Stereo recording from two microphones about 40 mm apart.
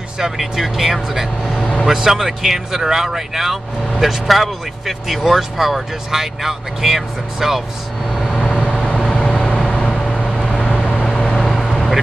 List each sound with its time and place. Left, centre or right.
0.4 s speech: centre
8.1 s vehicle: centre
9.1 s vehicle: centre